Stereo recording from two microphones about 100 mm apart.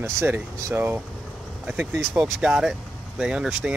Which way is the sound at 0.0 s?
25° right (ahead or behind).